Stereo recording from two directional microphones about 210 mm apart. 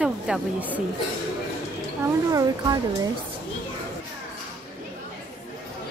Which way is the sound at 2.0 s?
15° right (ahead or behind).